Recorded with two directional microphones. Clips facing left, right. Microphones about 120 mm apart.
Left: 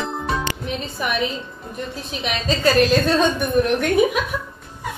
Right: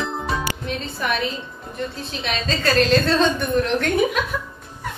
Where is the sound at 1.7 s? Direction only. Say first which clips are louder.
Right 1 dB; 15° left (ahead or behind).